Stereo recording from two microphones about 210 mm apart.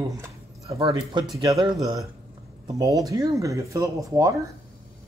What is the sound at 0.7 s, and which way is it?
Speech, 20° right (ahead or behind).